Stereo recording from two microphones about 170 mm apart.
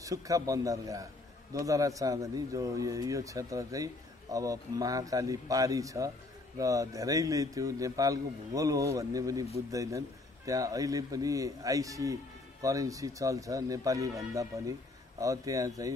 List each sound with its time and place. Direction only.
0.0 s a man's voice: 20° right (ahead or behind)